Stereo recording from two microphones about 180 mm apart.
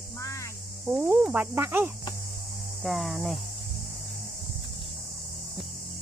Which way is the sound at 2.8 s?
Centre (ahead or behind).